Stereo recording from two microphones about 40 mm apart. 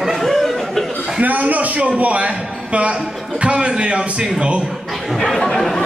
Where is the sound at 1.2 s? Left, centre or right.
Right.